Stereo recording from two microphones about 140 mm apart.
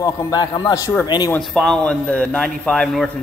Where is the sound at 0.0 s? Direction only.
25° left (ahead or behind).